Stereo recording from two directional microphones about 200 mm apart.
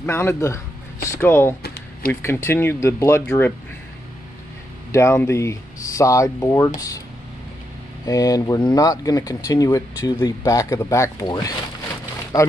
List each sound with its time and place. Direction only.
0.0 s speech: 10° left (ahead or behind)
4.9 s speech: 15° left (ahead or behind)
8.1 s speech: 20° left (ahead or behind)